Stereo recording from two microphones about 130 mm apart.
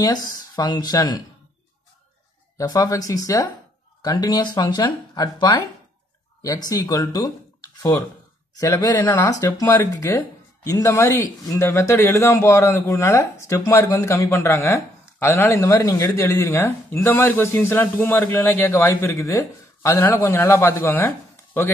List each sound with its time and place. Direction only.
0.0 s speech: 30° left (ahead or behind)
2.5 s a man's voice: 30° left (ahead or behind)